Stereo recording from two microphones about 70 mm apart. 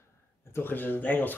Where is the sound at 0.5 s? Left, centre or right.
Left.